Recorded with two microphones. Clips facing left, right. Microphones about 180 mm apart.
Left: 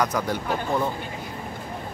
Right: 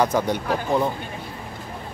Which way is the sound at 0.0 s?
30° right (ahead or behind).